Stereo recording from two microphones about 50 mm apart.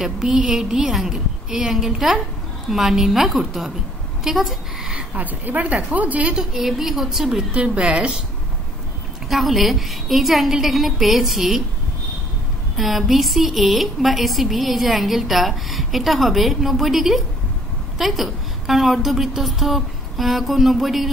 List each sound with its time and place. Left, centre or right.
0.0 s a woman's voice: centre
5.1 s speech: right
6.3 s a woman's voice: centre
7.2 s a woman's voice: centre
9.3 s a woman's voice: centre
12.7 s a woman's voice: centre